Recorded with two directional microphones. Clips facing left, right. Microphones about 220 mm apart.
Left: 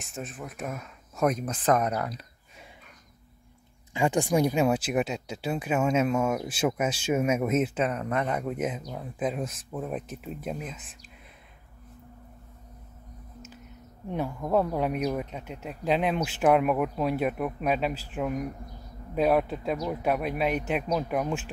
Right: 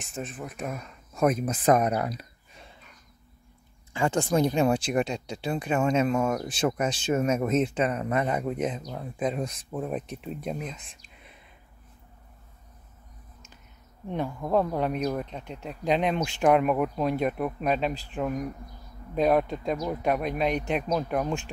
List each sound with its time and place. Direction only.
0.0 s speech: centre (ahead or behind)
3.9 s speech: 15° left (ahead or behind)
14.1 s speech: 5° left (ahead or behind)